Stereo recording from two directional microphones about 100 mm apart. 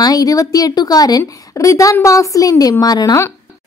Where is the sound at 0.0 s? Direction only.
40° left (ahead or behind).